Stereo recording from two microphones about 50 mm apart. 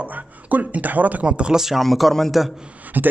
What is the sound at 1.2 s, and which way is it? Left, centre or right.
Speech, centre.